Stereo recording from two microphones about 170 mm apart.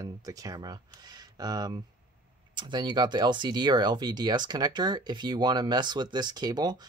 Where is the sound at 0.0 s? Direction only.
20° right (ahead or behind).